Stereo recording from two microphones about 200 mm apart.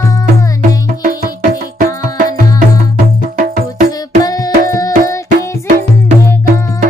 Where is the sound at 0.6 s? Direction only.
40° right (ahead or behind).